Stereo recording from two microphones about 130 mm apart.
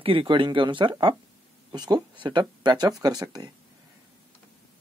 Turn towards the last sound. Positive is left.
turn(degrees=-30)  # may be behind; listen again after turning